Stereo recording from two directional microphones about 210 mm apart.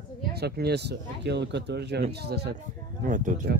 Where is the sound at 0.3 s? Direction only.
50° right (ahead or behind).